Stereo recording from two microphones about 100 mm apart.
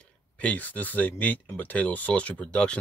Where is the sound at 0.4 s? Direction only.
15° left (ahead or behind).